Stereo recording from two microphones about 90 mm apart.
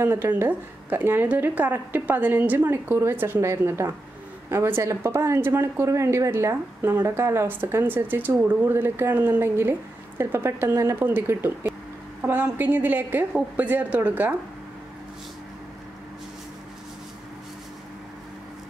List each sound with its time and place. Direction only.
0.0 s a woman's voice: 30° right (ahead or behind)